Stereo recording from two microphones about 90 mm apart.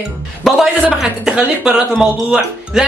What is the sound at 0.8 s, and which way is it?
Speech, 10° right (ahead or behind).